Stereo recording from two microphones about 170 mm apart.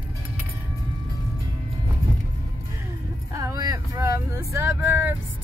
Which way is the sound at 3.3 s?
20° right (ahead or behind).